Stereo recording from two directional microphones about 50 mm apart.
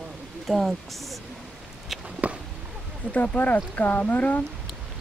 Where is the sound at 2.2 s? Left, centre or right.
Right.